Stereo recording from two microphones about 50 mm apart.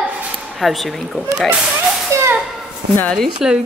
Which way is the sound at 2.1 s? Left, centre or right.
Right.